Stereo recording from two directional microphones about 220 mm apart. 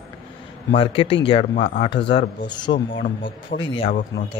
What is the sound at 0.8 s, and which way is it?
Speech, 25° left (ahead or behind).